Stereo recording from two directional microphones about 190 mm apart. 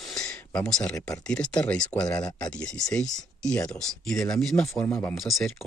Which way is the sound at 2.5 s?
5° left (ahead or behind).